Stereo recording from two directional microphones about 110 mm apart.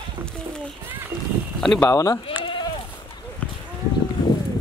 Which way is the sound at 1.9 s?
30° left (ahead or behind).